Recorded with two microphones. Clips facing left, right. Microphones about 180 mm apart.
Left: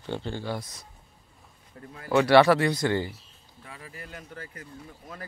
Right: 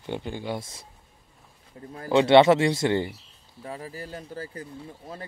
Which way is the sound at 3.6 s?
35° right (ahead or behind).